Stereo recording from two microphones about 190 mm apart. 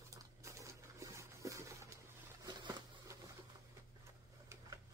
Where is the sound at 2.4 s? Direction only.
20° right (ahead or behind).